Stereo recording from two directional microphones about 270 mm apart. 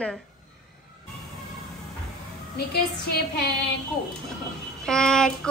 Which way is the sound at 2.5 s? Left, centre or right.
Left.